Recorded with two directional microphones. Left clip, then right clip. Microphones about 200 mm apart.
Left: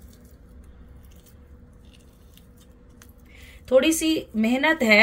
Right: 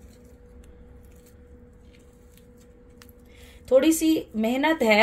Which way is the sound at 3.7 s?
15° right (ahead or behind).